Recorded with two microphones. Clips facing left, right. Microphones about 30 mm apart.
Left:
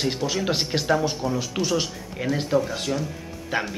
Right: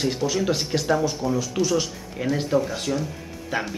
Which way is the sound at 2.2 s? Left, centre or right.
Centre.